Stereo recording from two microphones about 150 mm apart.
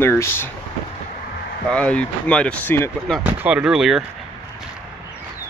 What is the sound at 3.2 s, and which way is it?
Speech, 10° right (ahead or behind).